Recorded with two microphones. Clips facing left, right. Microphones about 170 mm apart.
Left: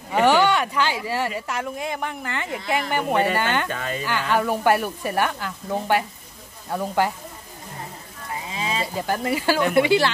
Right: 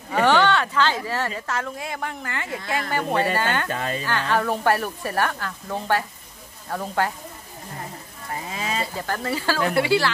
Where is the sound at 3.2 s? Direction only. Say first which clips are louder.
Left 1 dB; 35° right (ahead or behind).